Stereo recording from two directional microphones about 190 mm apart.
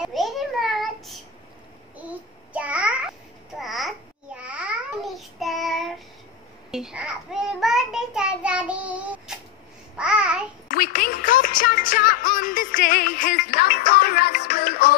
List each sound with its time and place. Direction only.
0.0 s a sound: centre (ahead or behind)
2.5 s babbling: 5° right (ahead or behind)
6.7 s child singing: 5° right (ahead or behind)
9.9 s babbling: 5° right (ahead or behind)
10.7 s music: 50° left (ahead or behind)